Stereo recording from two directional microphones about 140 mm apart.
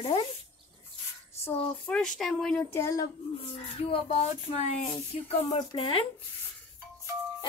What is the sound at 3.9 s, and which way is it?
Speech, 40° left (ahead or behind).